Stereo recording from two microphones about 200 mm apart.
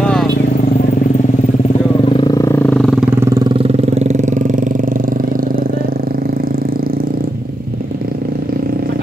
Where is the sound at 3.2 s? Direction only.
20° right (ahead or behind); by 5.9 s 45° right (ahead or behind).